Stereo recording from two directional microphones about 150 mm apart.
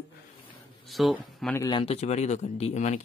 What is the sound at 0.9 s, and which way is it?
Speech, centre (ahead or behind).